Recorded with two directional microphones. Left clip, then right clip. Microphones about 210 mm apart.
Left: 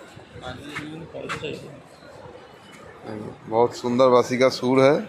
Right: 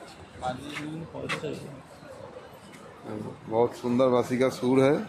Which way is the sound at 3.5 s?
10° left (ahead or behind).